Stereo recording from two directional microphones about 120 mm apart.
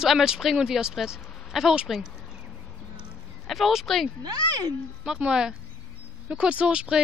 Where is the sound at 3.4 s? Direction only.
Centre (ahead or behind).